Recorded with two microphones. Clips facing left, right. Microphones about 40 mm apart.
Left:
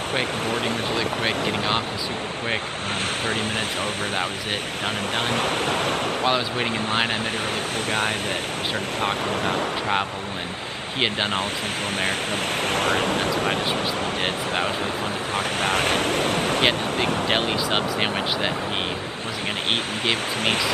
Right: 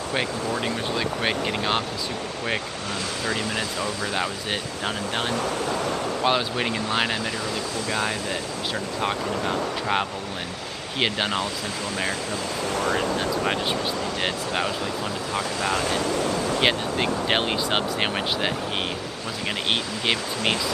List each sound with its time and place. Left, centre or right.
0.5 s speech: left
3.3 s speech: left
6.2 s speech: centre
6.9 s speech: left
12.6 s speech: left
14.2 s speech: left
15.3 s speech: left
17.3 s speech: centre
20.1 s speech: left